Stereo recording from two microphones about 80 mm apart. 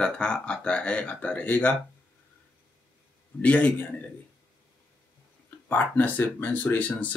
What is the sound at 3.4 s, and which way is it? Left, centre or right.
Speech, centre.